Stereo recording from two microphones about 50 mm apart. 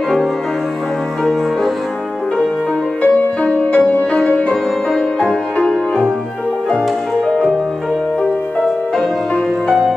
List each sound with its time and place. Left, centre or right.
3.0 s music: left